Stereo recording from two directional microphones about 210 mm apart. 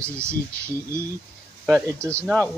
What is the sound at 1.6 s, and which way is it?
Speech, centre (ahead or behind).